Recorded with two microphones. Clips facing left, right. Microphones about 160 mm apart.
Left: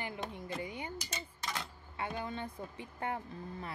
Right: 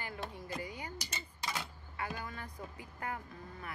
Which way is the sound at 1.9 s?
25° left (ahead or behind).